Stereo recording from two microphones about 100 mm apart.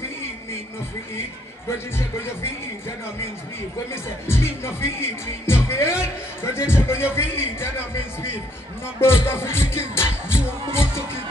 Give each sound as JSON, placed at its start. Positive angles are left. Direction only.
{"t": 3.9, "sound": "speech", "side_deg": 25}